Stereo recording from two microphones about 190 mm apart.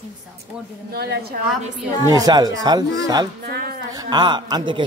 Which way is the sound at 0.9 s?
55° right (ahead or behind).